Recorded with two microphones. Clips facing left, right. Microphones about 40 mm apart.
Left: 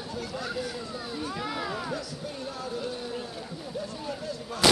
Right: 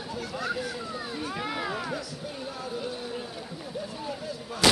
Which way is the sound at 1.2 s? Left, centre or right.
Right.